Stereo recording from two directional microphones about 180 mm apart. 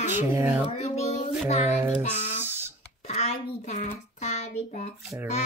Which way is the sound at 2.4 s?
10° right (ahead or behind).